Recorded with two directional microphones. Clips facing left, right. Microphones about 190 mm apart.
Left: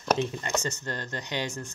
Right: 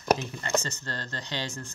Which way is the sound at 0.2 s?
20° left (ahead or behind).